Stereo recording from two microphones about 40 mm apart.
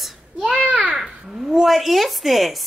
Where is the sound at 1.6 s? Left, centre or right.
Centre.